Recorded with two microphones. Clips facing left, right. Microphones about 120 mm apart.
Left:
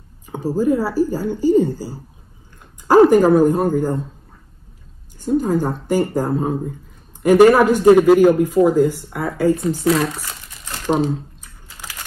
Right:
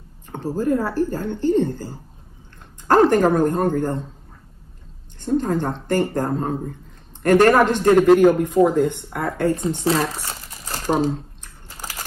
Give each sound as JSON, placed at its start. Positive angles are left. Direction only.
{"t": 0.3, "sound": "a woman's voice", "side_deg": 10}
{"t": 5.2, "sound": "a woman's voice", "side_deg": 10}
{"t": 9.9, "sound": "speech", "side_deg": -35}
{"t": 10.2, "sound": "crumpling", "side_deg": -35}
{"t": 11.7, "sound": "crushing", "side_deg": -40}